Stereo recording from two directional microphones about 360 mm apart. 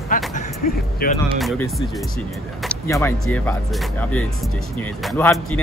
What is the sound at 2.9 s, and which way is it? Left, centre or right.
Speech, centre.